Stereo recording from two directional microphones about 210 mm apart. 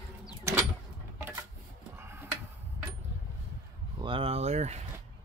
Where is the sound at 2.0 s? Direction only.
10° right (ahead or behind).